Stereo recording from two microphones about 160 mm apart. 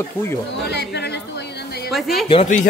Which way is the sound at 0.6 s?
90° left.